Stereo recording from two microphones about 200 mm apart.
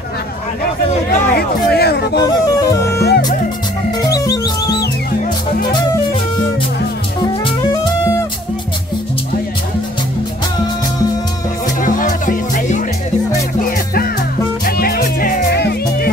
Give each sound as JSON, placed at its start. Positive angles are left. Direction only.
{"t": 1.1, "sound": "a sound", "side_deg": 50}
{"t": 2.4, "sound": "music", "side_deg": 15}
{"t": 3.0, "sound": "music", "side_deg": 50}
{"t": 4.0, "sound": "music", "side_deg": 15}
{"t": 11.8, "sound": "music", "side_deg": 40}